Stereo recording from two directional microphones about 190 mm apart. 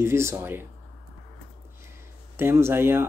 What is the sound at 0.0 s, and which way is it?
Speech, 15° right (ahead or behind).